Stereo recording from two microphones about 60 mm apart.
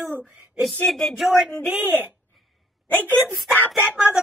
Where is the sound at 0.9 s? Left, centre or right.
Centre.